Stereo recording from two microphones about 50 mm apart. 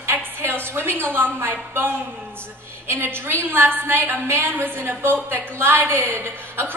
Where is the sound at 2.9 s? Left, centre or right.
Right.